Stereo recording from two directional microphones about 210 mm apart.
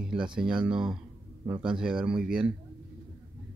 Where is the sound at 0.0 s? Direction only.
5° right (ahead or behind).